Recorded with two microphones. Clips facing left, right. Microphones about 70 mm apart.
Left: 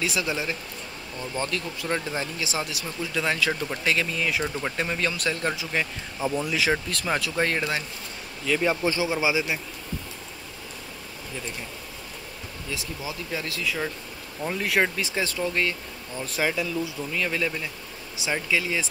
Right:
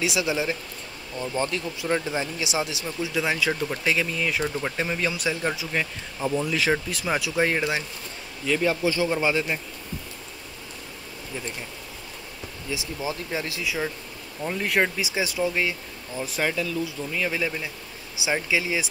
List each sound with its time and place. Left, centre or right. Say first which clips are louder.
0.0 s speech: right 2 dB; centre
1.8 s speech: right 4 dB; centre
3.0 s speech: right 1 dB; centre
6.9 s speech: right 1 dB; centre
8.6 s speech: right 1 dB; left
9.0 s speech: right 1 dB; centre
12.7 s speech: right 3 dB; centre
13.0 s speech: right 4 dB; right
14.4 s speech: even; centre
16.2 s speech: even; centre
17.1 s speech: even; centre